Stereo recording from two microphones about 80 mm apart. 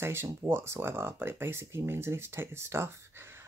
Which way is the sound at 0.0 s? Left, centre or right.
Right.